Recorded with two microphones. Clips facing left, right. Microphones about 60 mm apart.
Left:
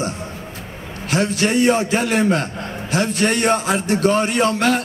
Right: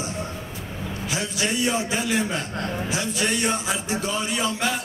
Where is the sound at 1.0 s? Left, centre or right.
Left.